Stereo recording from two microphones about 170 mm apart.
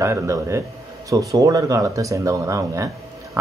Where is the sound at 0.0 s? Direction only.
15° right (ahead or behind).